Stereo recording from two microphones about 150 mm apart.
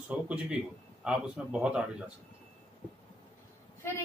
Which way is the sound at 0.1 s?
5° right (ahead or behind).